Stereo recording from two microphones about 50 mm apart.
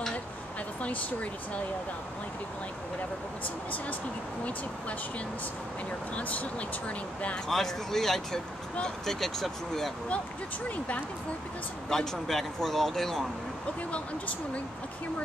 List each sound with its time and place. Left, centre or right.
0.8 s speech: left
6.1 s speech: left
7.4 s speech: centre
11.9 s speech: centre
13.9 s speech: left